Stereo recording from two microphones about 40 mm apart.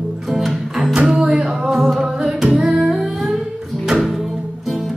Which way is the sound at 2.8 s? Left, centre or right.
Centre.